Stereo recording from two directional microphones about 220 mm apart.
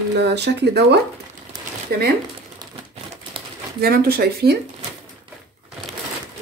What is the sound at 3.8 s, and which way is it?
Speech, 45° right (ahead or behind).